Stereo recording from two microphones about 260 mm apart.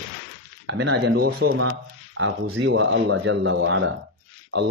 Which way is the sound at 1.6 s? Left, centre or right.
Right.